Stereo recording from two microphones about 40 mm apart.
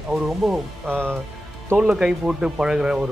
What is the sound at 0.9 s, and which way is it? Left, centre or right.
Speech, right.